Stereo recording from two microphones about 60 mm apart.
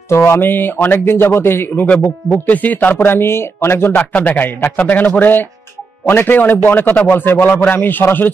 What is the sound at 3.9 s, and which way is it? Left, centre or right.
A man's voice, centre.